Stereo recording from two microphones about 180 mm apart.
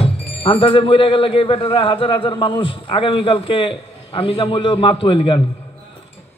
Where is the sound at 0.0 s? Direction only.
30° left (ahead or behind).